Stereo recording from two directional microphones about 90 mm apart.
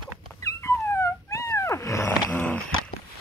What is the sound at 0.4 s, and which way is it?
Dog, 35° left (ahead or behind).